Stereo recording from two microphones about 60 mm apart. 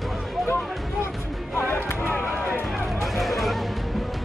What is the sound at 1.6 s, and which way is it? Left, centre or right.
Music, left.